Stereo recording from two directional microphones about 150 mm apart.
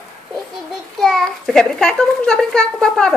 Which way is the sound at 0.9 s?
Centre (ahead or behind).